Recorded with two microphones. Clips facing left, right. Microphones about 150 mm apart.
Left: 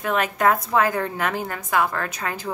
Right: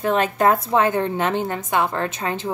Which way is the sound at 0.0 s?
30° right (ahead or behind).